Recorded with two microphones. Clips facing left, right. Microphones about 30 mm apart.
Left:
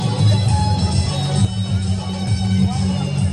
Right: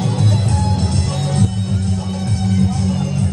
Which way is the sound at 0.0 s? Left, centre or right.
Left.